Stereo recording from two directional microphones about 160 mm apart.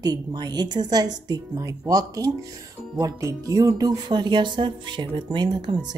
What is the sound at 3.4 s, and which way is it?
Speech, 20° right (ahead or behind).